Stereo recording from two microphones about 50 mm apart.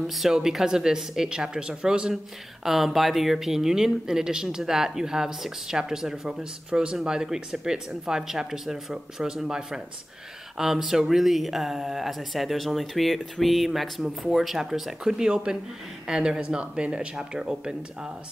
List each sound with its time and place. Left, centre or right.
0.0 s speech: centre
2.6 s speech: centre
6.7 s speech: right